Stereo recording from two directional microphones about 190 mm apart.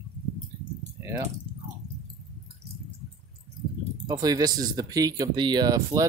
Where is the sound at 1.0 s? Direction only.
15° right (ahead or behind).